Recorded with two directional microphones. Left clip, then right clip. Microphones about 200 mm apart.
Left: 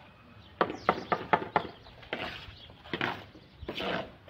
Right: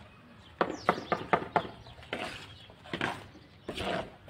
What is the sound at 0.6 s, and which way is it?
Horse, 5° left (ahead or behind).